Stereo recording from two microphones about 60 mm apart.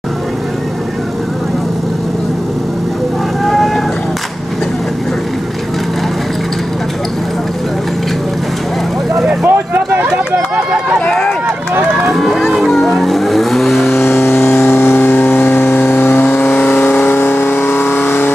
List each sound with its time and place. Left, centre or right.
3.4 s boat: centre
9.5 s a sound: right
10.0 s run: centre
11.1 s run: centre
12.2 s vehicle: centre
13.9 s vehicle: left